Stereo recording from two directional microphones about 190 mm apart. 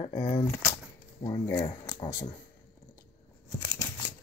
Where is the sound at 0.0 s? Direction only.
30° left (ahead or behind).